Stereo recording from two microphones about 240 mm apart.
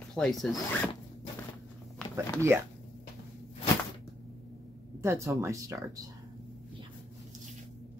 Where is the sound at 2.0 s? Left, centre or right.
Centre.